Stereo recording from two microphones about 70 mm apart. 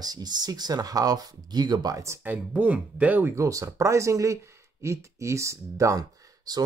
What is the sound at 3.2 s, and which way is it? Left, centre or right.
Speech, right.